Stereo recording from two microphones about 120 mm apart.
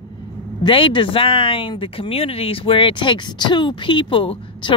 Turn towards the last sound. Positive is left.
turn(degrees=45)  # may be behind; listen again after turning